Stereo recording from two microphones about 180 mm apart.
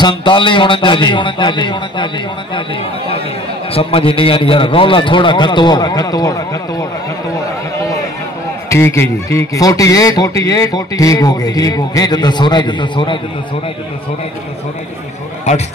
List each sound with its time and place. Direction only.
0.2 s speech: 25° left (ahead or behind)
3.7 s speech: 30° left (ahead or behind)
8.6 s a man's voice: 15° left (ahead or behind)